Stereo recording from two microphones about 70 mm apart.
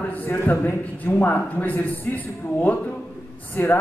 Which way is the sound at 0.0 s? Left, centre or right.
Left.